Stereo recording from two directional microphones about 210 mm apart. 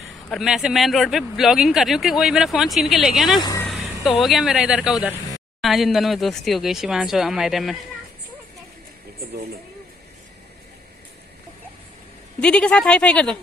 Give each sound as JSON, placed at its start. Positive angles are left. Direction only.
{"t": 0.3, "sound": "speech", "side_deg": 0}
{"t": 3.3, "sound": "speech", "side_deg": 20}
{"t": 4.0, "sound": "speech", "side_deg": 0}
{"t": 12.4, "sound": "speech", "side_deg": 5}